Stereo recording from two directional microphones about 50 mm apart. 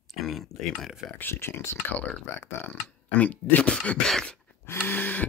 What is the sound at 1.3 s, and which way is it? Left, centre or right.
Speech, left.